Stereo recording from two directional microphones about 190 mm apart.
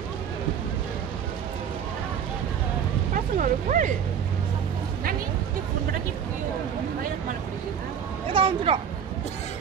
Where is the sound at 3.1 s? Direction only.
45° right (ahead or behind).